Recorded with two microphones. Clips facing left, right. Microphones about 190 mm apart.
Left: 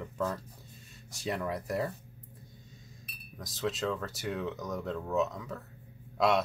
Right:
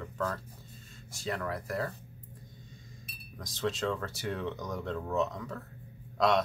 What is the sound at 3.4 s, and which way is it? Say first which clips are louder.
Speech: right 1 dB; 5° left (ahead or behind).